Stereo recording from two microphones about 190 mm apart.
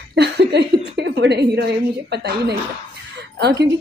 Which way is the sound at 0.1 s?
60° right (ahead or behind).